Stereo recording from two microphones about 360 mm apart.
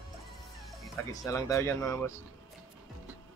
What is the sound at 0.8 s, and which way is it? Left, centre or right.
Speech, centre.